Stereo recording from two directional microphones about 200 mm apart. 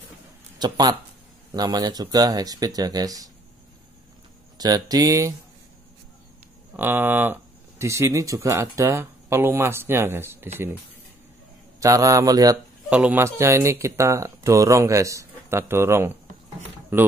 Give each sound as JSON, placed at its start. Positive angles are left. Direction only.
{"t": 0.6, "sound": "speech", "side_deg": -20}
{"t": 4.6, "sound": "speech", "side_deg": -20}
{"t": 6.8, "sound": "speech", "side_deg": -10}
{"t": 11.8, "sound": "speech", "side_deg": -15}